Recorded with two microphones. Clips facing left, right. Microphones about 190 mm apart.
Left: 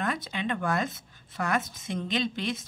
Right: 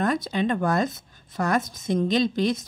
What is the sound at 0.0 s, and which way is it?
Speech, 40° right (ahead or behind).